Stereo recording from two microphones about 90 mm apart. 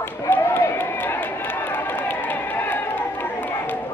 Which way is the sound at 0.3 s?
25° left (ahead or behind).